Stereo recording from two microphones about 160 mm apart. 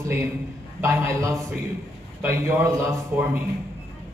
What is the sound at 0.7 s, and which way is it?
A man's voice, 15° right (ahead or behind).